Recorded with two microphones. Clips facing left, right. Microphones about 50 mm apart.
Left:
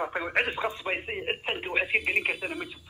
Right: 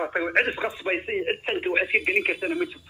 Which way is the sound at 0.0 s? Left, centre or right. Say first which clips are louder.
Right 4 dB; centre.